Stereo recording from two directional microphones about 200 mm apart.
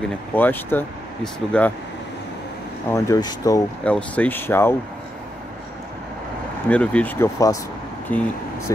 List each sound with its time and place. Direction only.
0.3 s speech: 10° left (ahead or behind)
2.9 s speech: 20° left (ahead or behind)
3.8 s speech: 5° left (ahead or behind)
6.7 s speech: 5° left (ahead or behind)